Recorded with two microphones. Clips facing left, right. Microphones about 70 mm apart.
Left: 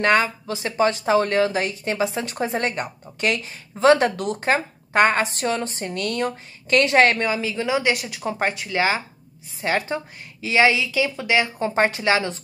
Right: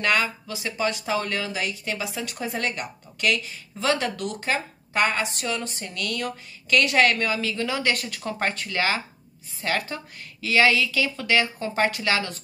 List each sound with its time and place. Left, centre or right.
0.0 s a woman's voice: left